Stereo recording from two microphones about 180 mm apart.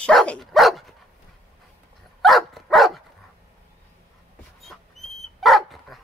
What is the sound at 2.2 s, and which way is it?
Dog, centre (ahead or behind).